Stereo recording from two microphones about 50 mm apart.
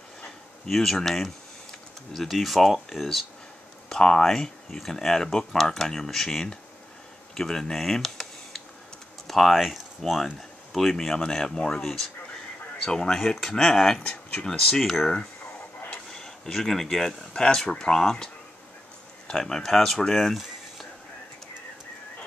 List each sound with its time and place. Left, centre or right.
0.7 s a sound: centre
2.2 s speech: centre
10.2 s speech: centre
16.1 s speech: centre